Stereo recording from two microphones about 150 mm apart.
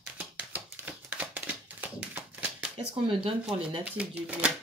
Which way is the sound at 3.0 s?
35° right (ahead or behind).